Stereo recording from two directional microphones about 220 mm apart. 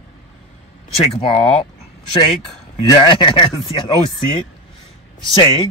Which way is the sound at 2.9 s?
20° left (ahead or behind).